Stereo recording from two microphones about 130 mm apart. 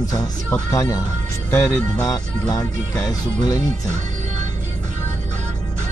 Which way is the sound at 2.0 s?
25° left (ahead or behind).